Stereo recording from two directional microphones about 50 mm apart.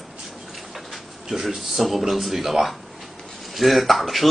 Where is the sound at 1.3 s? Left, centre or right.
Centre.